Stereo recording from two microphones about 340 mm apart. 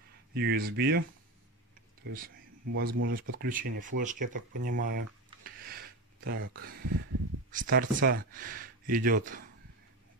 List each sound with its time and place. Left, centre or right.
0.3 s speech: right
2.1 s speech: right
6.2 s speech: right